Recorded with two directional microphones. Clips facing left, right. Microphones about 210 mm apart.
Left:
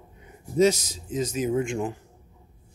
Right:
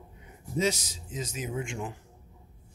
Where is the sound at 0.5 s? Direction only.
40° left (ahead or behind).